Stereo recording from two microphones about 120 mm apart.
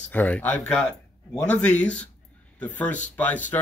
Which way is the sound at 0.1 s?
15° left (ahead or behind).